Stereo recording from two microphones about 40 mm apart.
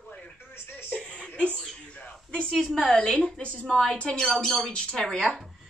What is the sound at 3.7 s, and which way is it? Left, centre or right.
Speech, centre.